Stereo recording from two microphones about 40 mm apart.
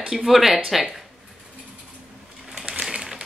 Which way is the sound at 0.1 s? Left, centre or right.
Centre.